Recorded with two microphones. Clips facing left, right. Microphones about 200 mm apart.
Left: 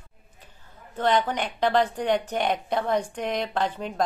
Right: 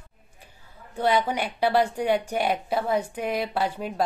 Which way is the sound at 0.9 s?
10° right (ahead or behind).